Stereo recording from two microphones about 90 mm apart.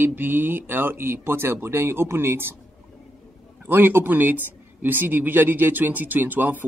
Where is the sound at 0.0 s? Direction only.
25° right (ahead or behind).